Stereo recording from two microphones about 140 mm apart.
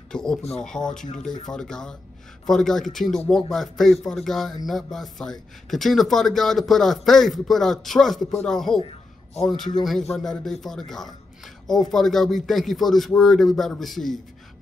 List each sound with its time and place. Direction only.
0.1 s speech: 5° left (ahead or behind)